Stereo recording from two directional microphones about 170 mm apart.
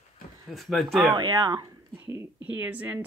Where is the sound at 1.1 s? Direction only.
25° right (ahead or behind); by 3.0 s 10° right (ahead or behind).